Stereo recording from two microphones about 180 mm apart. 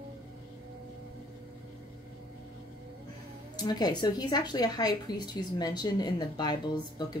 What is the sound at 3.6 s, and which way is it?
Speech, 20° left (ahead or behind).